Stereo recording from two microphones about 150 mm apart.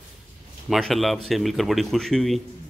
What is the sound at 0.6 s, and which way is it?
Speech, centre (ahead or behind).